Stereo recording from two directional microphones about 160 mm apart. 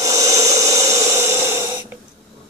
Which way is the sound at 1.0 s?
15° right (ahead or behind).